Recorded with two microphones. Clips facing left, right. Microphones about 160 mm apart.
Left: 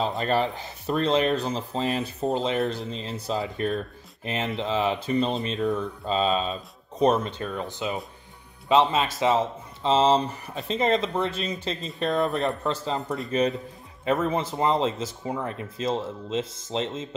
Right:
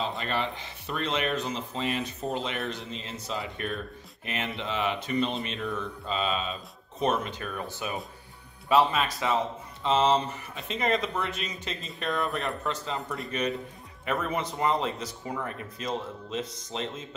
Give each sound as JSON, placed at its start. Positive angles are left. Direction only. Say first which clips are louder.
{"t": 0.2, "sound": "speech", "louder": "left 7 dB", "side_deg": 40}